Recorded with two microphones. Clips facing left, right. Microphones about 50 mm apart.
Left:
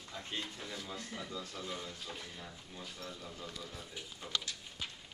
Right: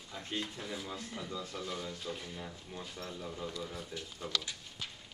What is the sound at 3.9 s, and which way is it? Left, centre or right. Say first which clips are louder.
Speech: right 3 dB; centre.